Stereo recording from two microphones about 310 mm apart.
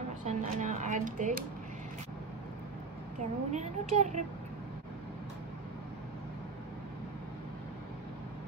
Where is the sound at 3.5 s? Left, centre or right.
Right.